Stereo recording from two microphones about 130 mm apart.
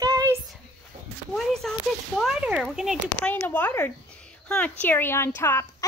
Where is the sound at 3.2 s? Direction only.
15° left (ahead or behind).